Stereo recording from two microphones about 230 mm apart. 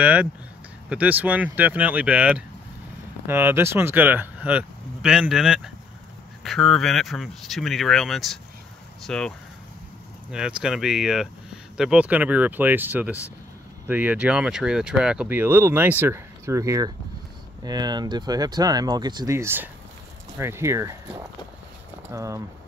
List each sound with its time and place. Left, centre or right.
0.0 s speech: centre
10.3 s speech: centre